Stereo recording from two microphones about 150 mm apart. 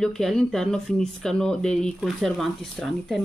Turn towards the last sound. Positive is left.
turn(degrees=0)  # may be behind; listen again after turning